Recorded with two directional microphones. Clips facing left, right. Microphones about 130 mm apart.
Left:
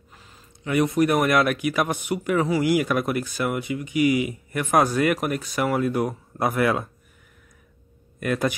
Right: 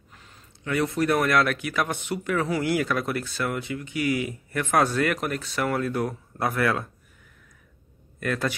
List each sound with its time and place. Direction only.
0.1 s a sound: 5° left (ahead or behind)
0.7 s speech: 15° left (ahead or behind)
8.2 s speech: 15° left (ahead or behind)